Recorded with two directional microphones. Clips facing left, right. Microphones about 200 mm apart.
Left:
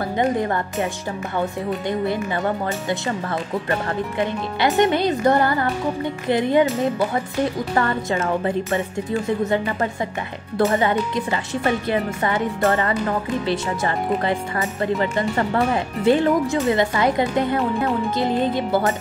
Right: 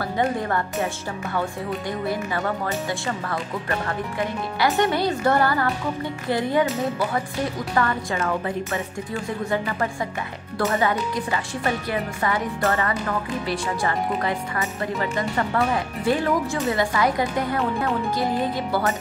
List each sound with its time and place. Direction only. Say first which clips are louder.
0.2 s speech: left 3 dB; 20° left (ahead or behind)
4.6 s speech: left 3 dB; 20° left (ahead or behind)
7.7 s speech: left 2 dB; 25° left (ahead or behind)
9.5 s speech: left 3 dB; 25° left (ahead or behind)